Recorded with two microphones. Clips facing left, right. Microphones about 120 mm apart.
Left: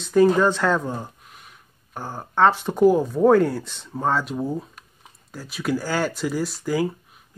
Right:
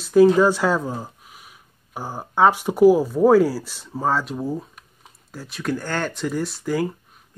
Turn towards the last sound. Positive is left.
turn(degrees=0)  # may be behind; listen again after turning